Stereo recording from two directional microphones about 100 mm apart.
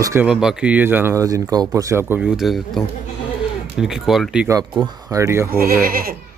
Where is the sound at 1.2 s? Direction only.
35° right (ahead or behind).